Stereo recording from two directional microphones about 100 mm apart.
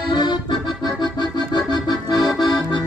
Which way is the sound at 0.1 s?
45° left (ahead or behind).